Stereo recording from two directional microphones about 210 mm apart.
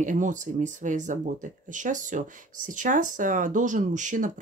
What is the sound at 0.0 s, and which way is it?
Speech, 35° right (ahead or behind).